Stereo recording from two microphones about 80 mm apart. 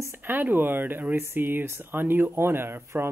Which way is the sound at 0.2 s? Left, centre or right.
Right.